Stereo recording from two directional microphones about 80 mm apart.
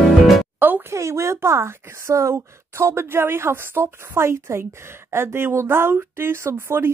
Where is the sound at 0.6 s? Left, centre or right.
Right.